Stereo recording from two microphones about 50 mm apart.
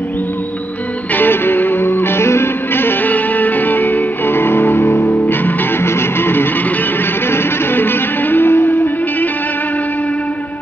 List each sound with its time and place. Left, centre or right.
1.1 s music: left
3.1 s music: left